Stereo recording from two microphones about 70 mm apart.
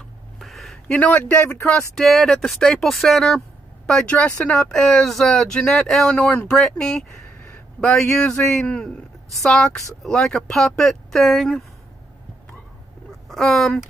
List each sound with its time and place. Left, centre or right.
0.4 s a sound: centre
0.8 s speech: left
1.7 s speech: centre
6.1 s a man's voice: centre
13.3 s speech: centre